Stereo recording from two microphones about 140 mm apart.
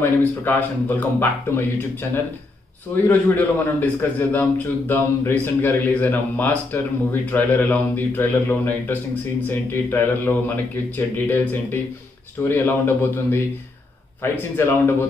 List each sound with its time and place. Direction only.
0.0 s a man's voice: 15° left (ahead or behind)